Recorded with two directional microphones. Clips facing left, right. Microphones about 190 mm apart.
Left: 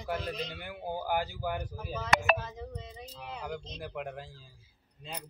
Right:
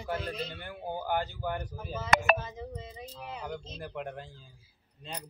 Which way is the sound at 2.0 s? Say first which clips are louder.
Right 2 dB; 50° right (ahead or behind).